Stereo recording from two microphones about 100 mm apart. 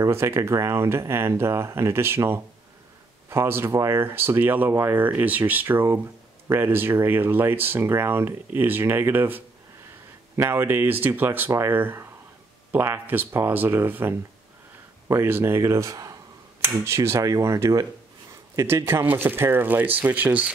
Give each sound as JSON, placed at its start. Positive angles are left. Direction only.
{"t": 0.0, "sound": "speech", "side_deg": -25}